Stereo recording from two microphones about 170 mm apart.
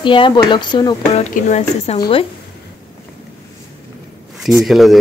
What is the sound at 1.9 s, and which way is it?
Speech, 25° left (ahead or behind).